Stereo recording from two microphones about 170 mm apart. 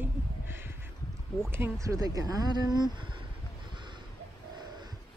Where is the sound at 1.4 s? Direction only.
15° right (ahead or behind).